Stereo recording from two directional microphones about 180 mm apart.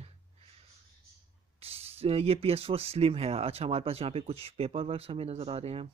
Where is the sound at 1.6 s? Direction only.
35° right (ahead or behind).